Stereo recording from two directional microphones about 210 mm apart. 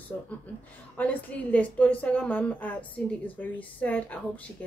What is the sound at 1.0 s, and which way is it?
A woman's voice, 5° left (ahead or behind).